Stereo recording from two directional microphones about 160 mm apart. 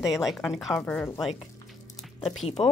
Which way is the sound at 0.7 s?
10° left (ahead or behind).